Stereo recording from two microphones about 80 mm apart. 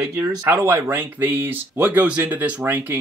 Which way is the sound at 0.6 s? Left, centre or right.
Right.